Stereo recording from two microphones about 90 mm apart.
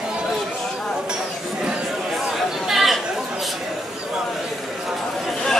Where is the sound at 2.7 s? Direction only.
Centre (ahead or behind).